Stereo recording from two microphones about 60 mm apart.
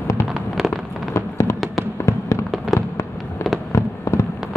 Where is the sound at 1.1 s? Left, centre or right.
Left.